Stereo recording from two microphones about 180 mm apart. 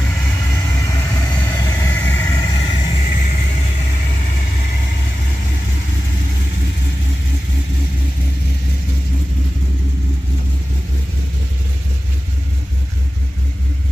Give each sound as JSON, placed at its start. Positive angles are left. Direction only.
{"t": 0.7, "sound": "vehicle", "side_deg": 20}